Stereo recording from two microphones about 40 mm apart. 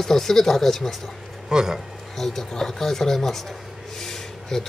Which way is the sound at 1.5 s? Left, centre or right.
Centre.